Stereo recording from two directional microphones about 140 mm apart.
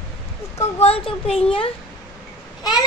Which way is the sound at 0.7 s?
45° left (ahead or behind).